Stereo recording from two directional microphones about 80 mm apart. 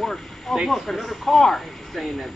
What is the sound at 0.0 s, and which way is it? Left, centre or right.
Speech, centre.